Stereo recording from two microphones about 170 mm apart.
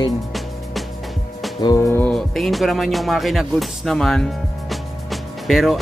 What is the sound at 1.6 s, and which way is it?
Music, 25° left (ahead or behind).